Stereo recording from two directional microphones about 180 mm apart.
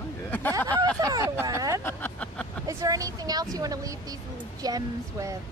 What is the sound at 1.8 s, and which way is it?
Speech, 10° left (ahead or behind).